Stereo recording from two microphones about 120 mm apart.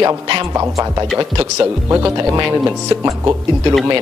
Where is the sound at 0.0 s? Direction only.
30° right (ahead or behind).